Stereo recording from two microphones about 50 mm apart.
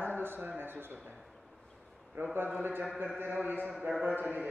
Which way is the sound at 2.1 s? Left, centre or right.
Right.